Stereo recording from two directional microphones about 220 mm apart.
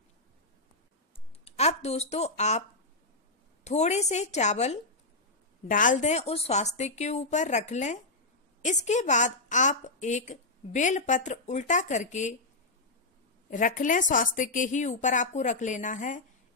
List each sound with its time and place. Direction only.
1.4 s a woman's voice: 30° left (ahead or behind)
3.6 s a woman's voice: 30° left (ahead or behind)
13.5 s a woman's voice: 35° left (ahead or behind)